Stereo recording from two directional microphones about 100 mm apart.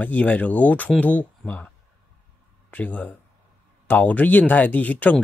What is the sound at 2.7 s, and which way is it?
Speech, 15° left (ahead or behind).